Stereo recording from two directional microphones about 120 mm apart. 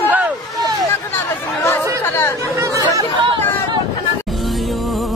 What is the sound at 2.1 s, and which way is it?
Speech, 20° left (ahead or behind).